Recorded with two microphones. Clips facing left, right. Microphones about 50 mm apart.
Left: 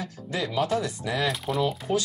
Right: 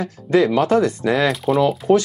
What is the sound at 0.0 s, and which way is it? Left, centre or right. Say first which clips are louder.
Speech: right 14 dB; right.